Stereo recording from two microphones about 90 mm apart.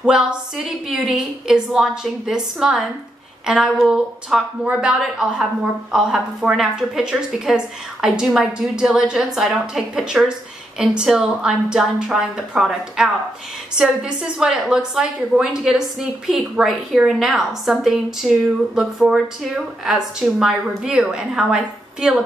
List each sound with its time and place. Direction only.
1.0 s a woman's voice: 5° right (ahead or behind)